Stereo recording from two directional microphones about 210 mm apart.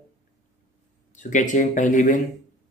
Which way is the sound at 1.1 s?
35° left (ahead or behind).